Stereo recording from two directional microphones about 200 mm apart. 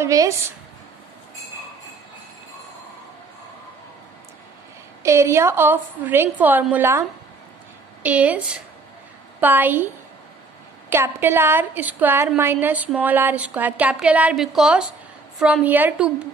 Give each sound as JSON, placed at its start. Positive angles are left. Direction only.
{"t": 0.0, "sound": "a woman's voice", "side_deg": -15}
{"t": 5.0, "sound": "a woman's voice", "side_deg": -15}
{"t": 10.9, "sound": "a woman's voice", "side_deg": -10}